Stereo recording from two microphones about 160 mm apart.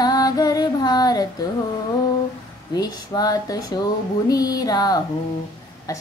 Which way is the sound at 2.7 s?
25° left (ahead or behind).